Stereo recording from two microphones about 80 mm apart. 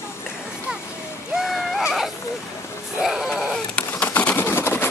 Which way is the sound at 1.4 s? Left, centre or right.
Centre.